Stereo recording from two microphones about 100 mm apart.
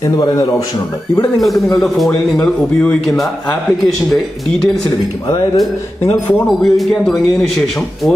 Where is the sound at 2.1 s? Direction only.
15° left (ahead or behind).